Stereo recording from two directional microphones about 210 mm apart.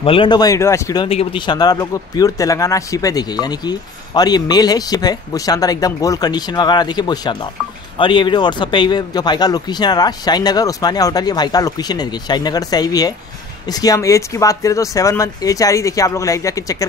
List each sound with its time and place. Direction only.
0.0 s speech: 25° left (ahead or behind)
1.0 s speech: 25° left (ahead or behind)